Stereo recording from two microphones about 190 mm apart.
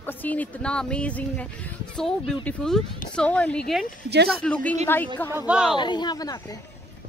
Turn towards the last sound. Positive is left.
turn(degrees=20)  # may be behind; listen again after turning